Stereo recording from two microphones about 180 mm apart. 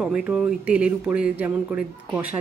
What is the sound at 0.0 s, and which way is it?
Speech, 5° right (ahead or behind).